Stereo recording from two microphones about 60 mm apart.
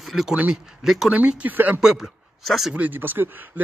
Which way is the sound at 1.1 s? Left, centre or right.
Right.